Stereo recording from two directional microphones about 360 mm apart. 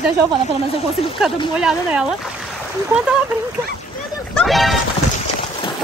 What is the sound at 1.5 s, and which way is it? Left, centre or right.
Speech, centre.